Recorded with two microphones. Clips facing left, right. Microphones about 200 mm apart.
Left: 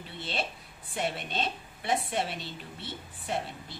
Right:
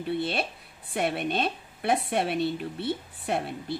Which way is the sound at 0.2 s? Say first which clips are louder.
Right 6 dB; 60° right (ahead or behind).